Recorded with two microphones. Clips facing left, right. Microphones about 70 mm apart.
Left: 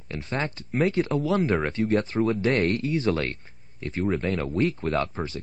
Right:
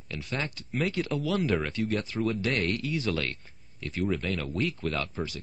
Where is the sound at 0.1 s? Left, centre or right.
Left.